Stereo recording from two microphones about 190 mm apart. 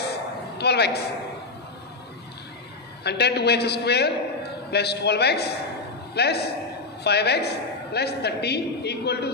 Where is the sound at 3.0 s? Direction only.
60° left (ahead or behind).